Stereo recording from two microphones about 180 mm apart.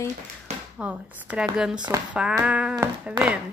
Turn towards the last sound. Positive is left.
turn(degrees=-5)  # may be behind; listen again after turning